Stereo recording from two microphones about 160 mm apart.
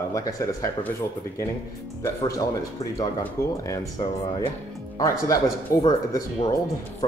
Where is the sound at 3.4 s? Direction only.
20° left (ahead or behind).